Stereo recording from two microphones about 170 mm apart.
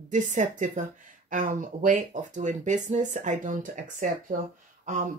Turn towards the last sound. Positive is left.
turn(degrees=-45)  # may be behind; listen again after turning